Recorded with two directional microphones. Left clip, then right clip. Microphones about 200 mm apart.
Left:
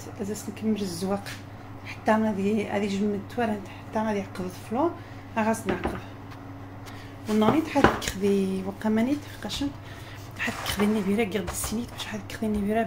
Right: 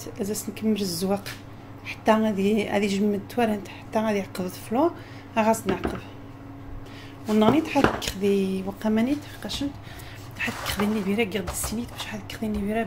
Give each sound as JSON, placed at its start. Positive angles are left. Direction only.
{"t": 0.2, "sound": "a woman's voice", "side_deg": -25}
{"t": 7.3, "sound": "a woman's voice", "side_deg": -25}
{"t": 7.6, "sound": "a woman's voice", "side_deg": -5}